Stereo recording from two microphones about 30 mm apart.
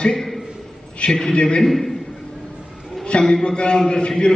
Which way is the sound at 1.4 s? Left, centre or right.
Left.